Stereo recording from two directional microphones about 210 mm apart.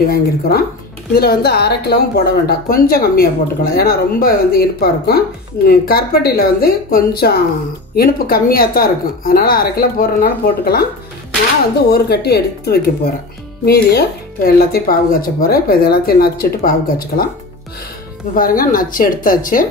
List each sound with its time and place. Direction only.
0.1 s speech: 45° left (ahead or behind)
11.9 s speech: 50° left (ahead or behind)
18.3 s speech: 40° left (ahead or behind)